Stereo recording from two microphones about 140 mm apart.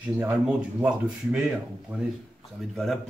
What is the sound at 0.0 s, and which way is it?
Speech, 10° right (ahead or behind).